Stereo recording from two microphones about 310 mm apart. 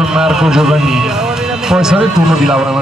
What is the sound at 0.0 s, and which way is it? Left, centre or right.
A man's voice, centre.